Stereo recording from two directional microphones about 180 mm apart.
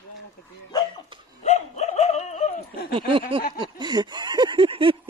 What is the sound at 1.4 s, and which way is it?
Dog, 40° left (ahead or behind).